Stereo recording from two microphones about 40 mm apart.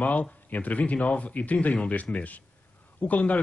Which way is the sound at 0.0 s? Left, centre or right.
Left.